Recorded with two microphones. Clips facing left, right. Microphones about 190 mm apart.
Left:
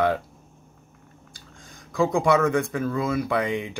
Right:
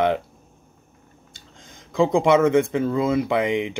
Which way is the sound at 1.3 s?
20° right (ahead or behind).